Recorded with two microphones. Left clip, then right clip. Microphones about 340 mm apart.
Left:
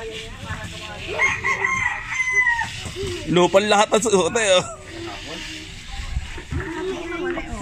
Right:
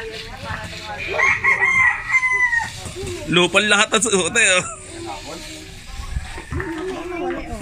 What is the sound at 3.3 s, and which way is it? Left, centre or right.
A man's voice, left.